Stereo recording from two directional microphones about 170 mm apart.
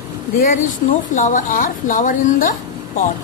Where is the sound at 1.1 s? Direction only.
50° left (ahead or behind).